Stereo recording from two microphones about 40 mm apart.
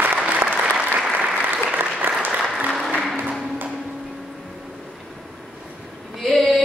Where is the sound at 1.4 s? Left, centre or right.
Right.